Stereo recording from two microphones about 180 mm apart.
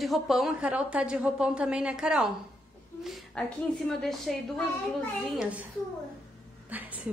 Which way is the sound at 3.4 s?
5° left (ahead or behind).